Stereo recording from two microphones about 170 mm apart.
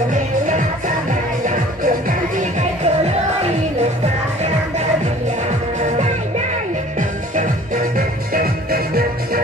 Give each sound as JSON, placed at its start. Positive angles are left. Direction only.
{"t": 0.1, "sound": "music", "side_deg": -50}
{"t": 5.8, "sound": "music", "side_deg": -45}
{"t": 8.3, "sound": "music", "side_deg": -60}